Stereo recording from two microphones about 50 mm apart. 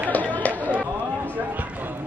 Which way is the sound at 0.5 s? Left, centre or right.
Right.